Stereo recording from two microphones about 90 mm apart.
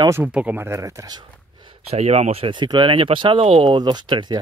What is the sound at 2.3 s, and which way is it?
Speech, 75° right (ahead or behind).